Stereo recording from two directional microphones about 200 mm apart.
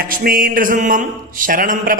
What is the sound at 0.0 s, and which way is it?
A man's voice, 45° right (ahead or behind).